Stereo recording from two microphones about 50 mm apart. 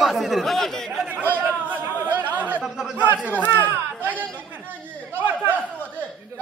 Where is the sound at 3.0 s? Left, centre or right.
Right.